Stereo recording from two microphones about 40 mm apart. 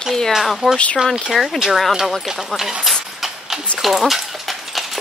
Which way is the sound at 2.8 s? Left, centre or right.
Centre.